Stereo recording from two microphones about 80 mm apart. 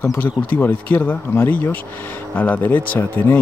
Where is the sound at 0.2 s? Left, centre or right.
Left.